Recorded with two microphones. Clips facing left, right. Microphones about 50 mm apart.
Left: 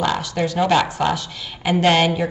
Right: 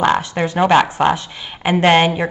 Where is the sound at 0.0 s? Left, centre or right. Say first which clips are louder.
Right 5 dB; right.